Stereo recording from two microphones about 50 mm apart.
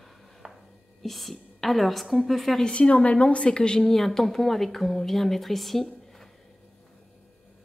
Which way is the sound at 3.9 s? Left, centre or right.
Centre.